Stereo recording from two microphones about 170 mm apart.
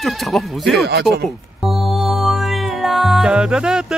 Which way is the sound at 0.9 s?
75° right (ahead or behind).